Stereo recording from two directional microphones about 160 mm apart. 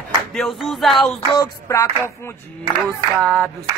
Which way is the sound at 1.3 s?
25° left (ahead or behind).